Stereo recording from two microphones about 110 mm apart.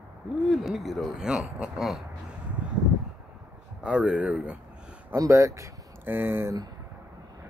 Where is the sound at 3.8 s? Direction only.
10° right (ahead or behind).